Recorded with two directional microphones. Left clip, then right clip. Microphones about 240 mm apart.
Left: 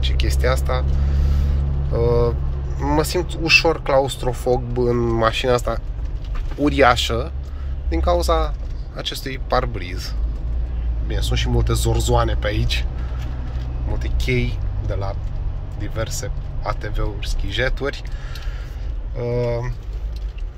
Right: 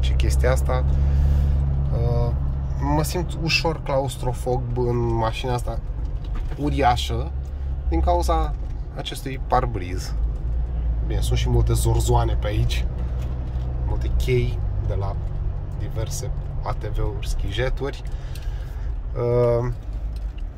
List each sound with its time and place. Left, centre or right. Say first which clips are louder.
0.0 s speech: left 2 dB; centre
2.0 s speech: left 10 dB; centre
13.9 s speech: left 1 dB; centre
19.1 s speech: right 3 dB; centre